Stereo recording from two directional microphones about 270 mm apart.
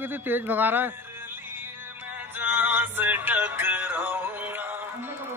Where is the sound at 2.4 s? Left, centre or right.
Centre.